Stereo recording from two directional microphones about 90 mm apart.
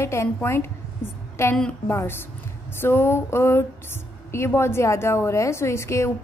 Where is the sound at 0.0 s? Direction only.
30° left (ahead or behind).